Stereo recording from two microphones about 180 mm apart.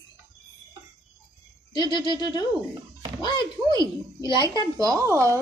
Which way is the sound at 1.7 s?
25° left (ahead or behind).